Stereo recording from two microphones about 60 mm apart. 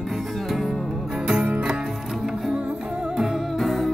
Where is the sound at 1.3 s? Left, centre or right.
Centre.